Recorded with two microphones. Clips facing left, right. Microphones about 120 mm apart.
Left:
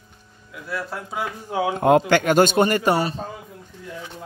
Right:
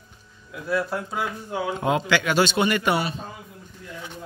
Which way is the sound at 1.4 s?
70° left (ahead or behind).